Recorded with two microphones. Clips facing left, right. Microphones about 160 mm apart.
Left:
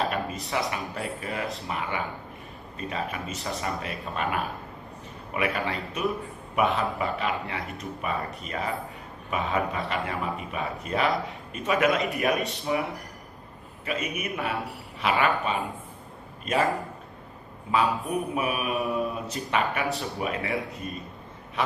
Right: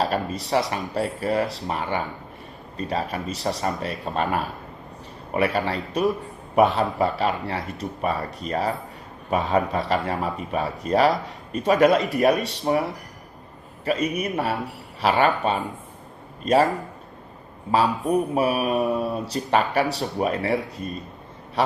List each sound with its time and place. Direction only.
0.0 s a man's voice: 35° right (ahead or behind)
17.6 s a man's voice: 35° right (ahead or behind)